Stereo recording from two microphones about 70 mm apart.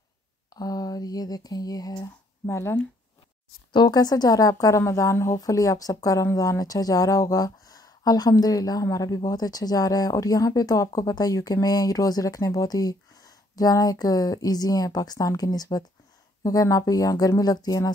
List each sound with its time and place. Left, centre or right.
0.6 s speech: left
2.4 s speech: left
3.7 s speech: left
5.4 s speech: left